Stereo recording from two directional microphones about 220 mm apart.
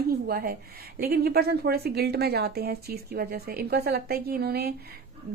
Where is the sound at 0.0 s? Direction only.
45° right (ahead or behind).